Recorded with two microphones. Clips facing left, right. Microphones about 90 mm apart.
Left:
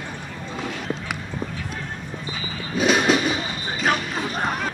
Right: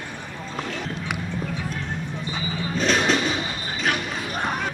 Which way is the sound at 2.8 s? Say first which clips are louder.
Left 3 dB; 5° left (ahead or behind).